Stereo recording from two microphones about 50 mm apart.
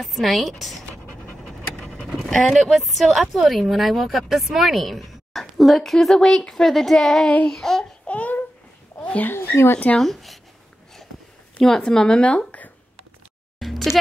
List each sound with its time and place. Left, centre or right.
0.0 s speech: centre
2.1 s speech: centre
7.4 s child singing: centre
8.1 s a sound: left
9.3 s speech: left
9.9 s speech: centre
11.6 s speech: centre; by 12.7 s left
13.6 s a sound: centre